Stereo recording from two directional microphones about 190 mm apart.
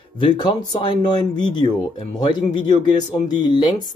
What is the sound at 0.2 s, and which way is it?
Speech, 25° left (ahead or behind).